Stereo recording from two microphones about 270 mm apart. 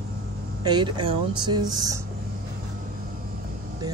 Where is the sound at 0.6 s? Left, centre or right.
Centre.